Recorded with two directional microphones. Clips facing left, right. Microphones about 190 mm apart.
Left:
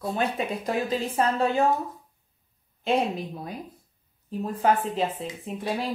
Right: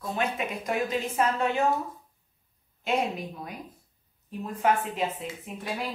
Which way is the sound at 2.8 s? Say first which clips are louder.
Left 3 dB; 30° left (ahead or behind).